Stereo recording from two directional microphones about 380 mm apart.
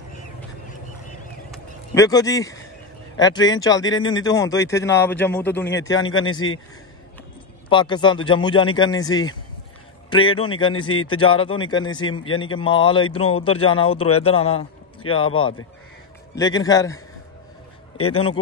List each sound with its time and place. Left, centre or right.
1.5 s a sound: centre
3.2 s speech: centre
6.4 s a man's voice: left
7.7 s speech: centre
10.7 s a man's voice: left
11.3 s a man's voice: centre
15.0 s a man's voice: left
16.3 s speech: centre
18.1 s speech: centre